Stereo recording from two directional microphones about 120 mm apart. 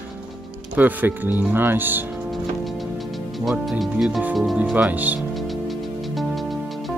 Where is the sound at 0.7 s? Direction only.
15° right (ahead or behind).